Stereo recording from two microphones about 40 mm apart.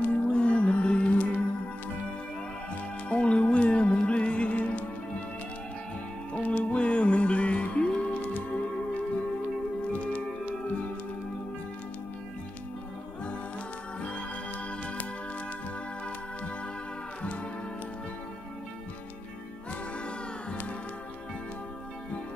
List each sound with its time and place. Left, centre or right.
0.0 s music: left
3.1 s music: left
6.3 s music: left